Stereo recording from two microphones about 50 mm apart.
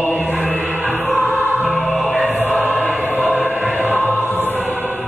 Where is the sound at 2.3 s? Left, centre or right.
Right.